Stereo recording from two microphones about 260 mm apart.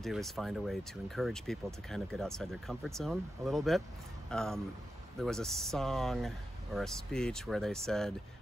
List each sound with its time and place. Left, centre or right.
0.0 s speech: centre